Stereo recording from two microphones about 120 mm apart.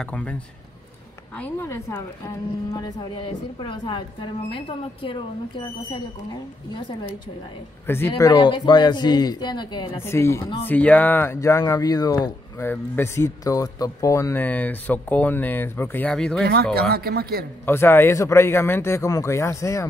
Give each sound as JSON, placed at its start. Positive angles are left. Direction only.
{"t": 0.0, "sound": "a woman's voice", "side_deg": 10}
{"t": 7.8, "sound": "speech", "side_deg": 20}
{"t": 8.2, "sound": "a woman's voice", "side_deg": 35}
{"t": 9.9, "sound": "speech", "side_deg": 20}
{"t": 12.7, "sound": "speech", "side_deg": 20}
{"t": 14.3, "sound": "speech", "side_deg": 15}
{"t": 16.1, "sound": "speech", "side_deg": 5}
{"t": 17.6, "sound": "speech", "side_deg": 20}